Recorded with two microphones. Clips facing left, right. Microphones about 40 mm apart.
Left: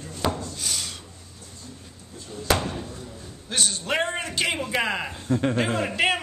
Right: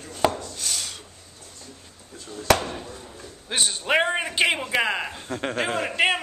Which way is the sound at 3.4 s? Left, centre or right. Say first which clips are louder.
Right 2 dB; centre.